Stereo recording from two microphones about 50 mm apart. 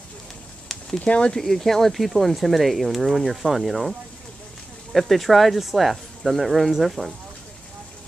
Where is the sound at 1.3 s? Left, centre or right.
Centre.